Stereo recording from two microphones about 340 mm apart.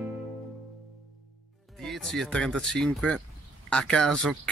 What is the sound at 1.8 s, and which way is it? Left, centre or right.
Speech, centre.